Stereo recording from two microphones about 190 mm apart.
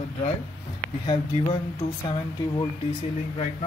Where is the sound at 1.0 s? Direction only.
25° left (ahead or behind).